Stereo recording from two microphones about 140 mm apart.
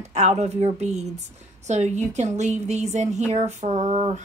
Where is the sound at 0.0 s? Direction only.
55° right (ahead or behind).